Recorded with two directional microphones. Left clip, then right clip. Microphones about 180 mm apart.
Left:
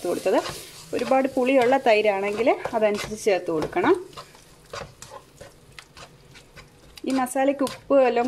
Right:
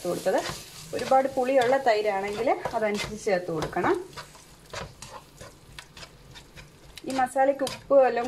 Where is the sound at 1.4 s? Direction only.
50° left (ahead or behind).